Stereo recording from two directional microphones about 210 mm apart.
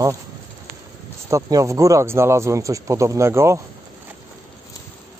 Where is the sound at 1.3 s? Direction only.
15° right (ahead or behind).